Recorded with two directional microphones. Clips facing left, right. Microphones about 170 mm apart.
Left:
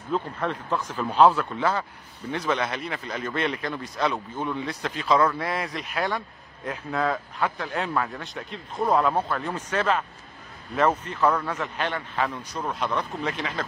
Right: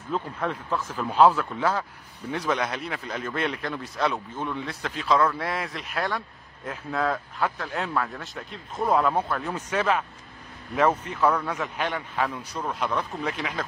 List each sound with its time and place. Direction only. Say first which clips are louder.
0.1 s speech: left 1 dB; 5° right (ahead or behind)